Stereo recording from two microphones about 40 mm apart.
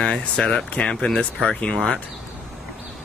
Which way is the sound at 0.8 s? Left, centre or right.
Left.